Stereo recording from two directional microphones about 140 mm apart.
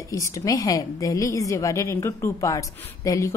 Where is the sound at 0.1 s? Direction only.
25° left (ahead or behind).